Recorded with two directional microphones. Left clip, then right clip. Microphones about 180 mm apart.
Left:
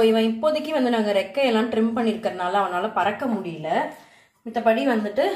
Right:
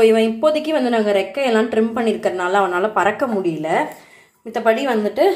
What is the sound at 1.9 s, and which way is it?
Speech, 30° right (ahead or behind).